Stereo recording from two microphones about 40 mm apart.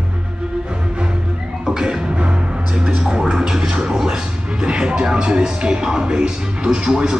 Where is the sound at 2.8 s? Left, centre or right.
Centre.